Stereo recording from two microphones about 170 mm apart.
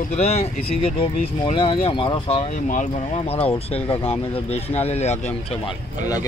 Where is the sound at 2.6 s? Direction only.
50° left (ahead or behind).